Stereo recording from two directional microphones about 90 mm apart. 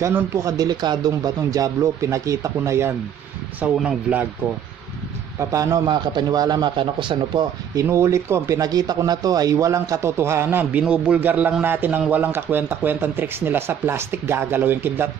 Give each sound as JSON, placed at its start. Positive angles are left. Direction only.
{"t": 0.1, "sound": "speech", "side_deg": -35}
{"t": 3.6, "sound": "speech", "side_deg": -15}
{"t": 5.4, "sound": "speech", "side_deg": -35}
{"t": 5.9, "sound": "a man's voice", "side_deg": -60}
{"t": 7.7, "sound": "speech", "side_deg": -35}